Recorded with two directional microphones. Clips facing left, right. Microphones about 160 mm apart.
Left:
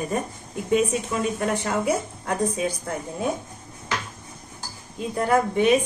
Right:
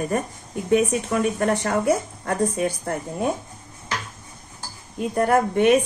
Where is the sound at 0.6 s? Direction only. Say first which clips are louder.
Right 2 dB; 65° right (ahead or behind).